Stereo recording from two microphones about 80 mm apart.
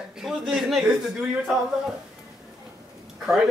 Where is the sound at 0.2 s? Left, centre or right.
Centre.